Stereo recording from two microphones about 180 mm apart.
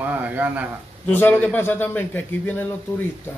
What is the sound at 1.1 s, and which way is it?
A man's voice, 10° left (ahead or behind).